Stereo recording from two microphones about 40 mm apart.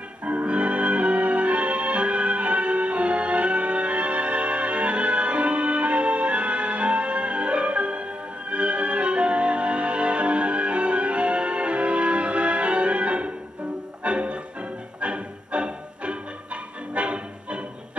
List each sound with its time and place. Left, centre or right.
0.2 s music: right